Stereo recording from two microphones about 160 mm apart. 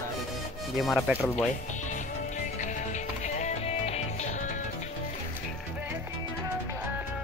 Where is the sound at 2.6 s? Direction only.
50° left (ahead or behind).